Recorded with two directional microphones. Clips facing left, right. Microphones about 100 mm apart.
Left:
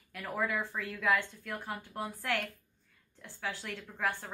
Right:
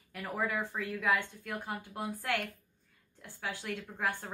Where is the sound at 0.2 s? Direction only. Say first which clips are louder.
Even; 15° right (ahead or behind).